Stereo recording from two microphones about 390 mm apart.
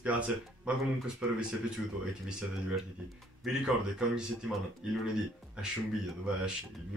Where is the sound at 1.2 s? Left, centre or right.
Centre.